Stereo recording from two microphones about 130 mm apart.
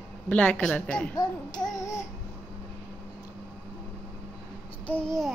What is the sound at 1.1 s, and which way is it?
Speech, 30° left (ahead or behind).